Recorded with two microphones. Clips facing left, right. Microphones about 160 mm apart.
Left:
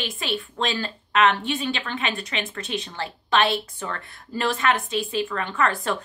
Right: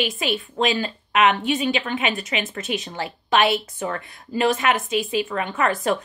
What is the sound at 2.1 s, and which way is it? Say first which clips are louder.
A woman's voice: right 3 dB; centre (ahead or behind).